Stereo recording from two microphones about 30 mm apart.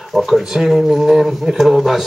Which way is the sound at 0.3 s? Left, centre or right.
Centre.